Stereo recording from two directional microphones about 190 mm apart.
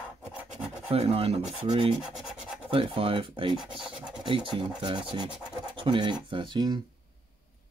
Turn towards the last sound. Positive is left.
turn(degrees=-25)  # may be behind; listen again after turning